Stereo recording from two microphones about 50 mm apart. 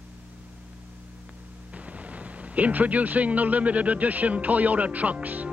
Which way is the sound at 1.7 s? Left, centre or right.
Right.